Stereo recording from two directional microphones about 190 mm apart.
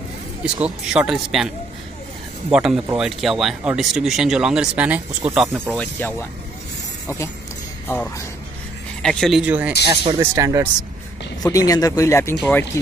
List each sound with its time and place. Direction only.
0.4 s speech: 5° right (ahead or behind)
2.5 s speech: 5° right (ahead or behind)
5.8 s speech: 10° left (ahead or behind)
9.0 s speech: centre (ahead or behind)
9.8 s speech: 20° right (ahead or behind)
11.4 s speech: 20° left (ahead or behind)